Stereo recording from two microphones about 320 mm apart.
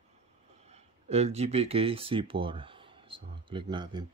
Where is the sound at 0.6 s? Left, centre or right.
Centre.